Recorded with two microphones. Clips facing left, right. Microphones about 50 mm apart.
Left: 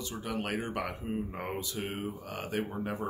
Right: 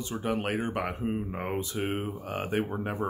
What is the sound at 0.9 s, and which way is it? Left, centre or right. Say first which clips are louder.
Speech: right 5 dB; right.